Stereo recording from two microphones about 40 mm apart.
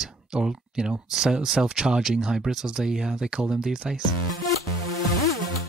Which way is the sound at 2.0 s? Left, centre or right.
Centre.